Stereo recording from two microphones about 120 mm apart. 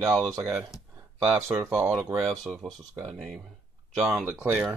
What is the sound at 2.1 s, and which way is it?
Speech, centre (ahead or behind).